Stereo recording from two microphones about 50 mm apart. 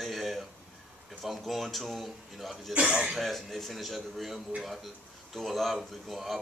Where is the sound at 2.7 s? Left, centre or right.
Right.